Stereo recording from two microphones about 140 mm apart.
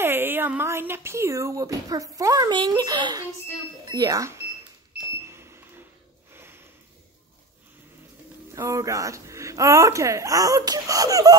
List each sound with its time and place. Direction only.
0.0 s speech: 15° right (ahead or behind)
5.2 s a sound: 20° right (ahead or behind)
6.3 s sniff: 15° right (ahead or behind)
8.5 s speech: 20° right (ahead or behind)